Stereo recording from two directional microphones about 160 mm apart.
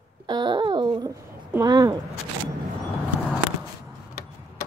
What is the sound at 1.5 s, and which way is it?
Speech, 25° right (ahead or behind).